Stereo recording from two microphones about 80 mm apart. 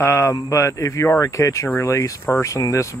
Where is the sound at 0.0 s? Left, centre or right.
Left.